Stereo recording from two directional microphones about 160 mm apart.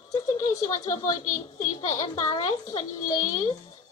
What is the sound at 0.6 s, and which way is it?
Speech, 20° left (ahead or behind).